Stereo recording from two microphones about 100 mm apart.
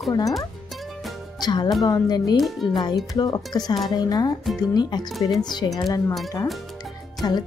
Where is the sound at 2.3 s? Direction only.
Centre (ahead or behind).